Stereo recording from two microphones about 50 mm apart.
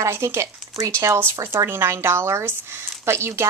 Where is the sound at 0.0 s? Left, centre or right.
Right.